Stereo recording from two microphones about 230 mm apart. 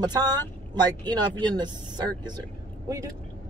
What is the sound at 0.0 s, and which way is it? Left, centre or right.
Speech, centre.